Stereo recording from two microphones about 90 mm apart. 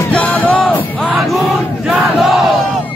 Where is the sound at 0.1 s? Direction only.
15° left (ahead or behind).